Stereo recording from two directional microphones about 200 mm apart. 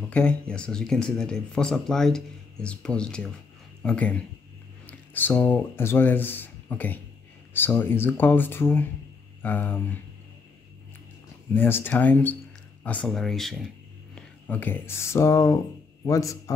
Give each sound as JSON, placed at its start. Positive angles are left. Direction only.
{"t": 0.1, "sound": "speech", "side_deg": 5}
{"t": 11.5, "sound": "speech", "side_deg": 10}